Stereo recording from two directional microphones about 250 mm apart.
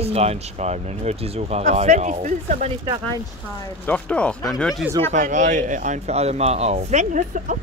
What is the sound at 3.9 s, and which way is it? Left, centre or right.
Speech, centre.